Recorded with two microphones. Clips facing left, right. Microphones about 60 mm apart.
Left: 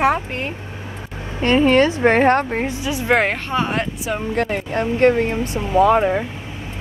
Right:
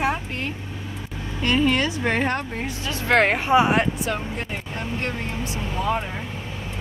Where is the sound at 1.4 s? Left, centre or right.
Left.